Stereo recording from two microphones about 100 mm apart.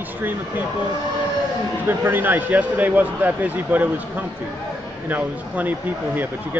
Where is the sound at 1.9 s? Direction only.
20° right (ahead or behind).